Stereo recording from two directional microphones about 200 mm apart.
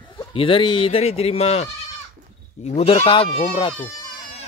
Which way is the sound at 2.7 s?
30° left (ahead or behind).